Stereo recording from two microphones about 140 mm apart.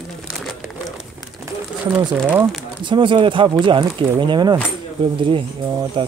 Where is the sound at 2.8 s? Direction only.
35° right (ahead or behind).